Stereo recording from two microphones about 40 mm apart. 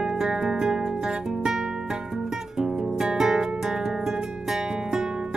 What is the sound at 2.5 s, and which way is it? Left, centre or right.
Music, centre.